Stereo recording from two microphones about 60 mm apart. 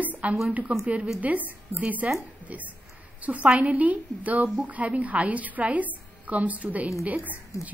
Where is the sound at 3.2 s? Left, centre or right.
Right.